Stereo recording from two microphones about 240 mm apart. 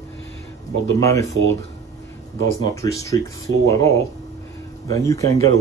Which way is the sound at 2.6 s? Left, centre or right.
Centre.